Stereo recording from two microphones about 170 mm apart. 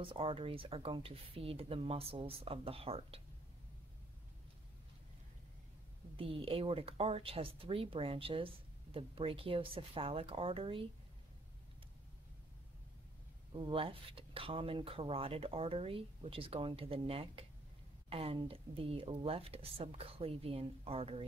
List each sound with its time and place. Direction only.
0.0 s speech: 30° right (ahead or behind)
6.1 s speech: 35° right (ahead or behind)
13.5 s speech: 30° right (ahead or behind)